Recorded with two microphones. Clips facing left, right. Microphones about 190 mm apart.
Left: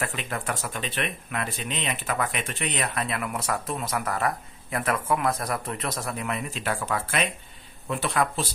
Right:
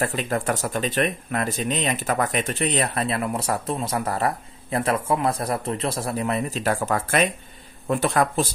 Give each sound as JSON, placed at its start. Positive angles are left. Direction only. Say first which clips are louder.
{"t": 0.0, "sound": "speech", "louder": "right 7 dB", "side_deg": -40}